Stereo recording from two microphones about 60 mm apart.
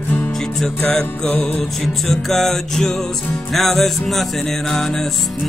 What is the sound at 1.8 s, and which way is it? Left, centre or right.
Music, centre.